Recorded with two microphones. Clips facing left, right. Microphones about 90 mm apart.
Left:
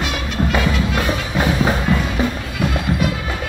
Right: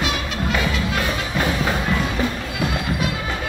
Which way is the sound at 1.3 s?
15° left (ahead or behind).